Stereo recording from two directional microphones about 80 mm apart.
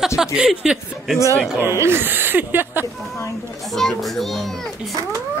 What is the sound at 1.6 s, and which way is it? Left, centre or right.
Speech, right.